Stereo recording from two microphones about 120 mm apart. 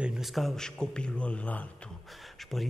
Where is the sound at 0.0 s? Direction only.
Centre (ahead or behind).